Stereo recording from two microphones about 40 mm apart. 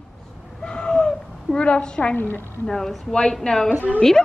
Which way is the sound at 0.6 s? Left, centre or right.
Left.